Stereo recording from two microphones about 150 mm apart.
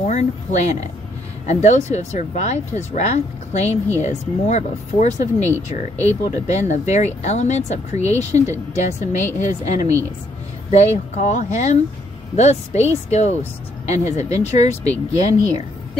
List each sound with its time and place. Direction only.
0.0 s speech: 50° left (ahead or behind)